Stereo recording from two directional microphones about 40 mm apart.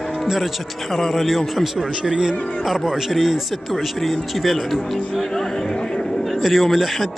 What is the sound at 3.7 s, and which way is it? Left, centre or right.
Speech, centre.